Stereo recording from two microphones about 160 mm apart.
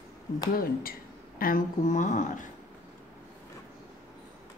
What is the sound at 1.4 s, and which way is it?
Speech, 60° left (ahead or behind).